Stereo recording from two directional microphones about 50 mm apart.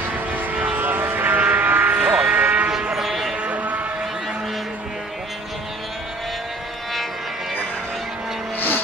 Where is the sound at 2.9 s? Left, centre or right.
Centre.